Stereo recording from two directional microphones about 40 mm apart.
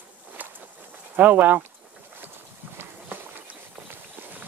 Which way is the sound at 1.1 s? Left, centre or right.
Right.